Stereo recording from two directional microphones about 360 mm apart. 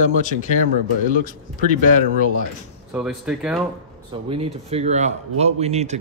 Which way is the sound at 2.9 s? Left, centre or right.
Centre.